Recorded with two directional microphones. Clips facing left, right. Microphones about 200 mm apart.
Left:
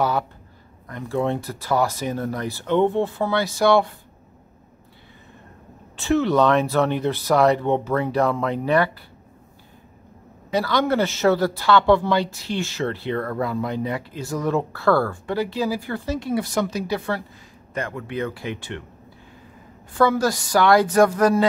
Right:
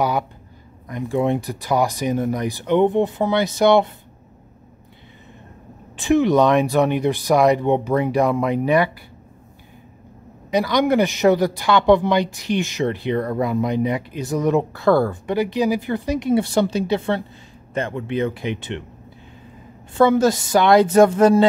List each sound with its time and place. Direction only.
0.8 s speech: 15° right (ahead or behind)
5.9 s speech: 15° right (ahead or behind)
10.5 s a woman's voice: 15° right (ahead or behind)
19.9 s a woman's voice: 25° right (ahead or behind)